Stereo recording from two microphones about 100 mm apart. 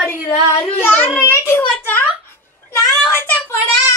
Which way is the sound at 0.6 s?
15° left (ahead or behind).